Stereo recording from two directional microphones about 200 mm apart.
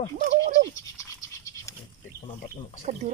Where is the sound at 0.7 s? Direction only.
15° left (ahead or behind).